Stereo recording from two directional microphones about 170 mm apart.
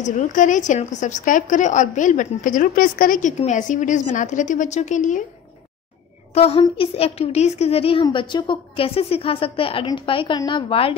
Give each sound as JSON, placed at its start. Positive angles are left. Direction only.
{"t": 0.0, "sound": "a woman's voice", "side_deg": 45}
{"t": 6.3, "sound": "a woman's voice", "side_deg": 35}